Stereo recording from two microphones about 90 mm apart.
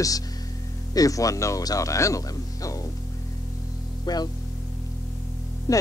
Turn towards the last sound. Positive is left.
turn(degrees=40)  # may be behind; listen again after turning